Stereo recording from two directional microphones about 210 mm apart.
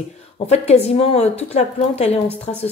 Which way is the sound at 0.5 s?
30° left (ahead or behind).